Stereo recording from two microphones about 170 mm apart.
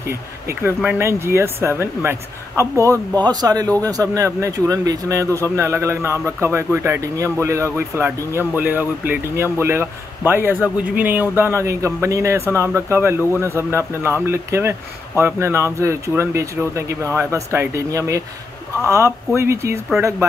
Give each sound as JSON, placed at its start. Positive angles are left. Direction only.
{"t": 0.1, "sound": "speech", "side_deg": -15}